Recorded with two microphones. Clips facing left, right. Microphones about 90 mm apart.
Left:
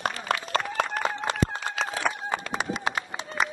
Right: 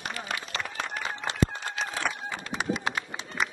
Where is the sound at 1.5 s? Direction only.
60° left (ahead or behind).